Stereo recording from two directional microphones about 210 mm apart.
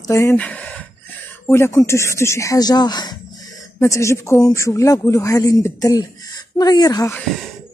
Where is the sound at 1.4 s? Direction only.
10° left (ahead or behind).